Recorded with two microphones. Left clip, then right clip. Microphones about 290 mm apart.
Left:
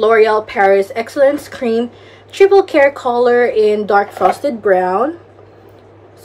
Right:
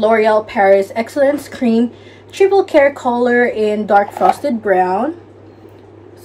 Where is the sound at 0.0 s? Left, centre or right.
Centre.